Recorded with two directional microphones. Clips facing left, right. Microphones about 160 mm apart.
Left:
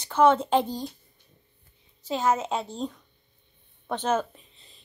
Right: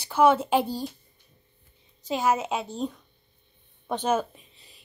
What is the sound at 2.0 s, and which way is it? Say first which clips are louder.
A woman's voice: even; 10° right (ahead or behind).